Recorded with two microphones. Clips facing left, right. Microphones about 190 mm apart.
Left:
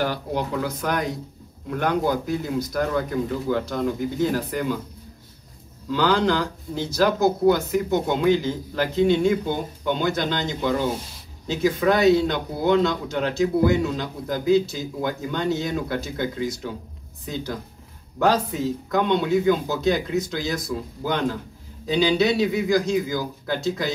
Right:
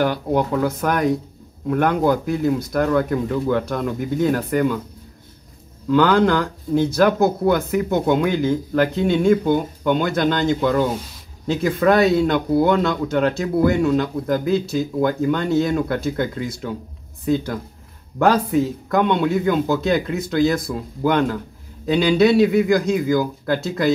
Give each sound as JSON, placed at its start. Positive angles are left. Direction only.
{"t": 0.0, "sound": "speech", "side_deg": -50}
{"t": 5.9, "sound": "speech", "side_deg": -55}